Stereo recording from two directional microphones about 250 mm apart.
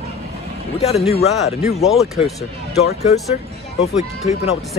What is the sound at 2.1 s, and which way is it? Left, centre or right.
Speech, centre.